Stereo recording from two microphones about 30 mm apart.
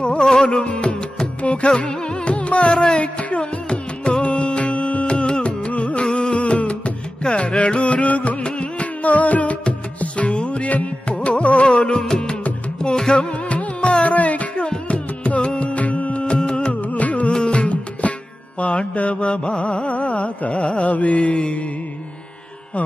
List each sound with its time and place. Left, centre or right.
0.2 s music: centre
0.5 s music: left
2.7 s music: left
3.0 s music: left
8.5 s music: left
9.0 s music: left
11.1 s carnatic music: left
11.6 s music: left
13.5 s music: left
14.0 s music: left
14.5 s music: left
16.3 s music: left
16.9 s music: left